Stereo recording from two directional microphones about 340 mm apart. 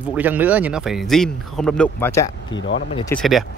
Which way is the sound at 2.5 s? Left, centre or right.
Left.